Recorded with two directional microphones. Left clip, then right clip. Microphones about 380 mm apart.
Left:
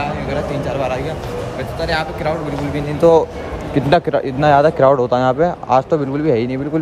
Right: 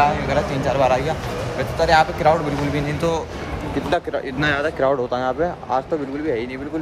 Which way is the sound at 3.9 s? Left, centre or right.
Centre.